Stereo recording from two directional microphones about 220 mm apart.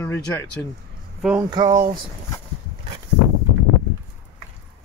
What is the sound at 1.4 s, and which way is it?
Speech, 20° right (ahead or behind).